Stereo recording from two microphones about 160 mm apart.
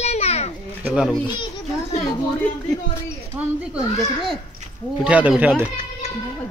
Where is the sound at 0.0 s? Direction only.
40° left (ahead or behind).